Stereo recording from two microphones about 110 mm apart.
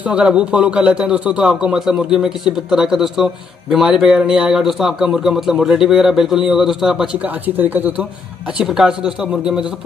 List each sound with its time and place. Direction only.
0.0 s a man's voice: 10° right (ahead or behind)
7.4 s a man's voice: 15° right (ahead or behind)
8.5 s a man's voice: 5° right (ahead or behind)